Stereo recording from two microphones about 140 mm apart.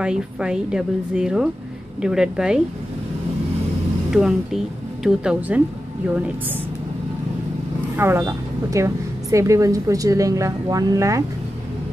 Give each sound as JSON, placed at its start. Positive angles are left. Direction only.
{"t": 0.0, "sound": "a woman's voice", "side_deg": -5}
{"t": 4.1, "sound": "a woman's voice", "side_deg": -5}
{"t": 7.9, "sound": "a woman's voice", "side_deg": -15}